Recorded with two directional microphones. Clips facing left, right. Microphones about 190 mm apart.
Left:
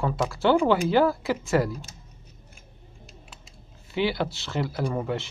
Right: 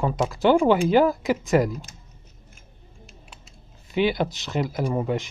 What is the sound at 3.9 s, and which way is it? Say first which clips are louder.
Speech: right 3 dB; 20° right (ahead or behind).